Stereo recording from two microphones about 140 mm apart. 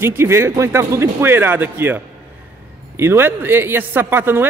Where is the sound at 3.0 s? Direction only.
15° right (ahead or behind).